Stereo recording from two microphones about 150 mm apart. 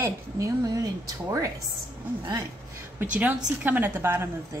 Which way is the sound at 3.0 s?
10° right (ahead or behind).